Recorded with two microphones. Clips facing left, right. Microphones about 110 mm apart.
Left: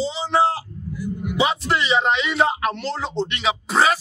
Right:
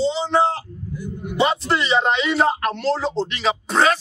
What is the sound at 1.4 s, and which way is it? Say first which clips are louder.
Speech: right 2 dB; centre (ahead or behind).